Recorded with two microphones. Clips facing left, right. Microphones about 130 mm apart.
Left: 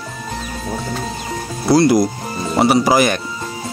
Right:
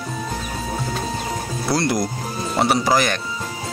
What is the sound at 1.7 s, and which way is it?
Speech, 5° left (ahead or behind).